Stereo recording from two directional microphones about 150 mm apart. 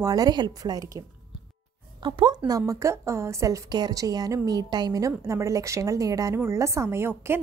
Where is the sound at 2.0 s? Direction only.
30° right (ahead or behind).